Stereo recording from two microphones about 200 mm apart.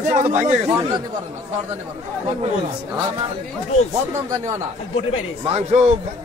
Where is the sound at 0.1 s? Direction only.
40° right (ahead or behind).